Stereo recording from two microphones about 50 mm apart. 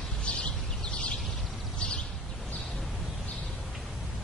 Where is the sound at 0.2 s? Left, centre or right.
Left.